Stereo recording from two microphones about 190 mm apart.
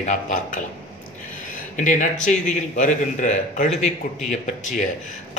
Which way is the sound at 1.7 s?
45° left (ahead or behind).